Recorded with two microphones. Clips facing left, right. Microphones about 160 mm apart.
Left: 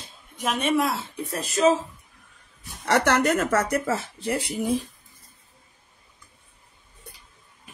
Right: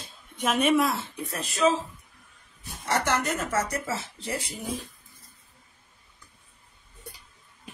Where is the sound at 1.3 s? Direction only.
40° left (ahead or behind).